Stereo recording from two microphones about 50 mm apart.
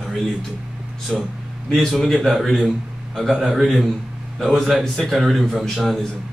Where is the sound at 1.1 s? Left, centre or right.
Centre.